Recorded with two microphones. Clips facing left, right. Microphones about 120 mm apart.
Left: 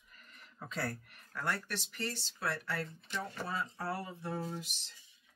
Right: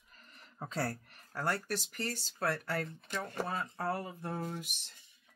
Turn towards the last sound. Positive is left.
turn(degrees=-55)  # may be behind; listen again after turning